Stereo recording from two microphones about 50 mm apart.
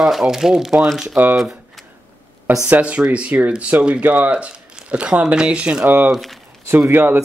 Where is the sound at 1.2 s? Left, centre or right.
Right.